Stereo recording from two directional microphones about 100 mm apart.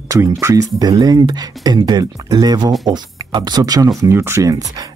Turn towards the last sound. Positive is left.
turn(degrees=-35)  # may be behind; listen again after turning